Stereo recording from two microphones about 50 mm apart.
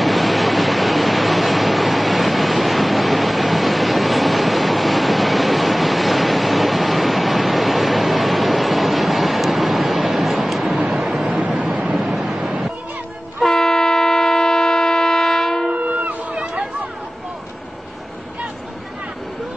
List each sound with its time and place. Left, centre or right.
0.0 s vehicle: centre
11.3 s vehicle: centre
13.5 s a sound: centre
15.7 s music: right